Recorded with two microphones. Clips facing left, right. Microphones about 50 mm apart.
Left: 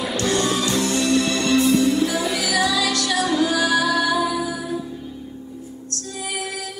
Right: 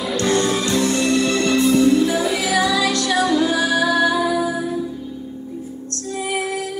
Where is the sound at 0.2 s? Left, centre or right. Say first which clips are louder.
Right 3 dB; right.